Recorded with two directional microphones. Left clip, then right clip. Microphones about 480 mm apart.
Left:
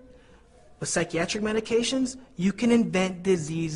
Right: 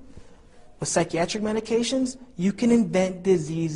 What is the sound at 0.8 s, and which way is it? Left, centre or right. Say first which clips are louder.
Speech: right 3 dB; centre.